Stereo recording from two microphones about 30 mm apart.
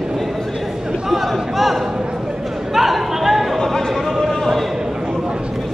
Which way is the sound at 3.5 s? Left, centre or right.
Centre.